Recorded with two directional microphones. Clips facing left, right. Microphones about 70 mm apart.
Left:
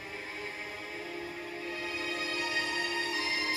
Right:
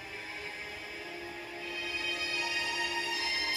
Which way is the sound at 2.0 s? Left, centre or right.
Left.